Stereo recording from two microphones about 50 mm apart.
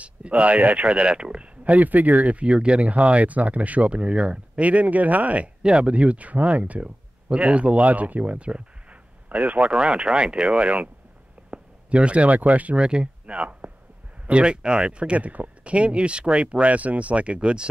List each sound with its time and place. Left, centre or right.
0.0 s speech: right
1.6 s speech: right
5.6 s speech: centre
11.5 s a sound: right
12.4 s speech: right
12.7 s speech: centre